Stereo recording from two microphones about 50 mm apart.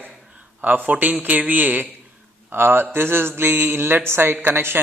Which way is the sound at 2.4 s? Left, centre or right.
Right.